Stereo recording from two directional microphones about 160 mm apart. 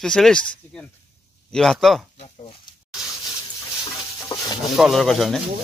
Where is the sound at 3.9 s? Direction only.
25° left (ahead or behind).